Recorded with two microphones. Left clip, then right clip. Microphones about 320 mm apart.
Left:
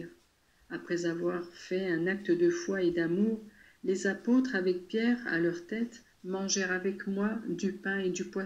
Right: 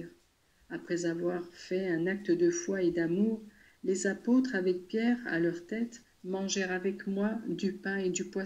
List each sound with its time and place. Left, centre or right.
0.7 s speech: centre